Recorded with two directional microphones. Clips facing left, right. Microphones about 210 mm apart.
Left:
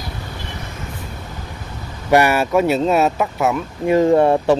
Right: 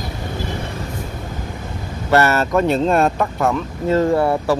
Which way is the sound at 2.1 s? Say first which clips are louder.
Left 1 dB; 15° left (ahead or behind).